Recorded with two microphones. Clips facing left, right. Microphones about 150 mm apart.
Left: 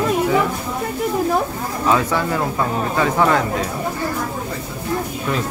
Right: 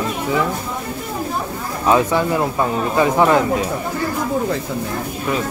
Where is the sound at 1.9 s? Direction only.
20° right (ahead or behind).